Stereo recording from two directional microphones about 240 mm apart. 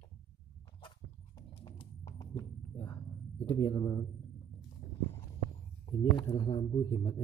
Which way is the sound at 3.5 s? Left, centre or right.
Centre.